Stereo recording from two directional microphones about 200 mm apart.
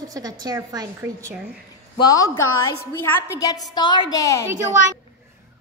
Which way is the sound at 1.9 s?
20° left (ahead or behind).